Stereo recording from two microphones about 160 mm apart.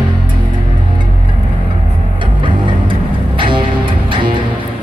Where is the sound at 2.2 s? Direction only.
30° right (ahead or behind).